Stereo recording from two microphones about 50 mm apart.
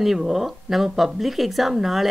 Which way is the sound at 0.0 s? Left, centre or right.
Centre.